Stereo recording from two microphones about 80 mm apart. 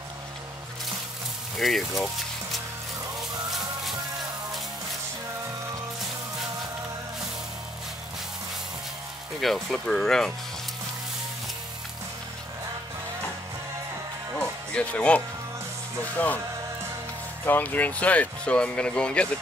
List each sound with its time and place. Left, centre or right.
1.6 s speech: centre
9.4 s speech: centre
14.4 s music: centre
16.2 s speech: centre
17.5 s speech: left